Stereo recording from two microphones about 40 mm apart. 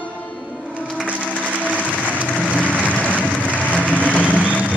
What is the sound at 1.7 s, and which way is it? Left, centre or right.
Applause, right.